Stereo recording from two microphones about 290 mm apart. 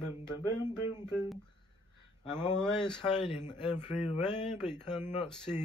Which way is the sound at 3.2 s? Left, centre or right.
Centre.